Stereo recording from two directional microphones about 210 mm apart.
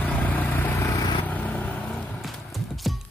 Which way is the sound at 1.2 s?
5° left (ahead or behind).